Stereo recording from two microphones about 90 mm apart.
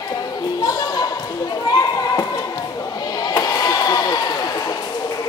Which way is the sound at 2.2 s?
40° left (ahead or behind).